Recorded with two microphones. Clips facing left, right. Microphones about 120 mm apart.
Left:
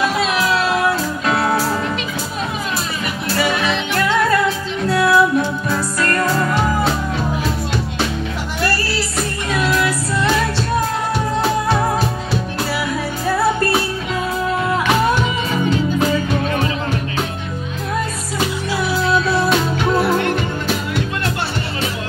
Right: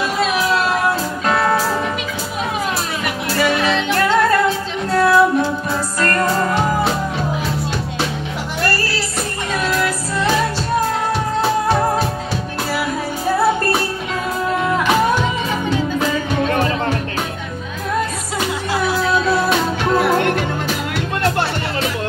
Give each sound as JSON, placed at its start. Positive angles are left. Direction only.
{"t": 3.6, "sound": "music", "side_deg": -40}